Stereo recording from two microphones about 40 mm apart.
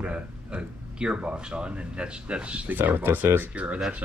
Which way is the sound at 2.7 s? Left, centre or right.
Right.